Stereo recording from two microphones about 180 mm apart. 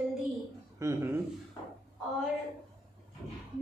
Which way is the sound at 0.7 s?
15° right (ahead or behind).